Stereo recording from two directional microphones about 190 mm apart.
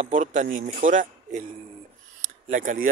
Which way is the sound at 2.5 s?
40° right (ahead or behind).